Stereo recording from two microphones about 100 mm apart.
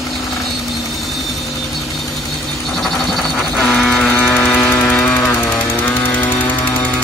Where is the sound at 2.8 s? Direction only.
5° left (ahead or behind).